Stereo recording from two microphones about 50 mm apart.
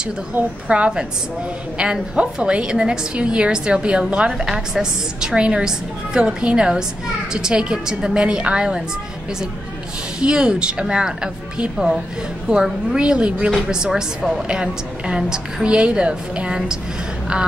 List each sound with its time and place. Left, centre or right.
0.0 s a woman's voice: right
10.2 s a woman's voice: centre